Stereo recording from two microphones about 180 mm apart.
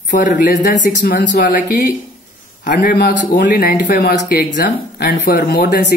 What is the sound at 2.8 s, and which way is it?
Speech, 60° left (ahead or behind).